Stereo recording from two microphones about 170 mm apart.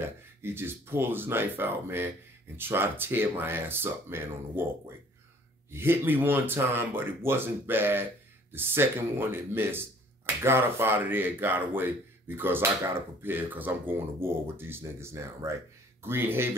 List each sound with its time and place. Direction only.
0.0 s speech: 15° right (ahead or behind)